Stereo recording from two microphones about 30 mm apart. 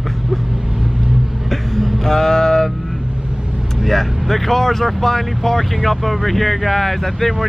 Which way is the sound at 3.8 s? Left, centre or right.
Centre.